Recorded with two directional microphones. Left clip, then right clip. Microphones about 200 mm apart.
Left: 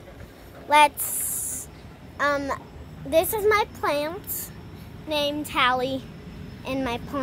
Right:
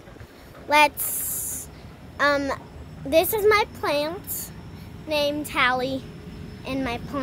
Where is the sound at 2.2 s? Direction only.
20° right (ahead or behind).